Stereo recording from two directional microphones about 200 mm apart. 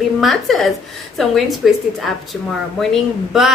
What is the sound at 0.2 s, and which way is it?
A woman's voice, centre (ahead or behind).